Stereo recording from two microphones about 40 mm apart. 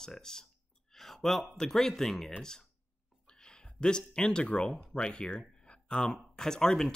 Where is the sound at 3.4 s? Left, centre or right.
Left.